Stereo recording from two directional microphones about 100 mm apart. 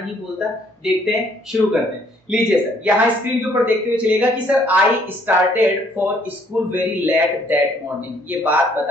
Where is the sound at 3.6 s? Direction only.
15° right (ahead or behind).